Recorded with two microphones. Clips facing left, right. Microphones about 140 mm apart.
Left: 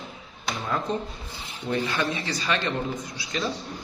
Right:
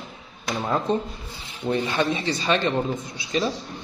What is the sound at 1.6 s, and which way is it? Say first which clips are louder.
A man's voice: right 3 dB; 25° right (ahead or behind).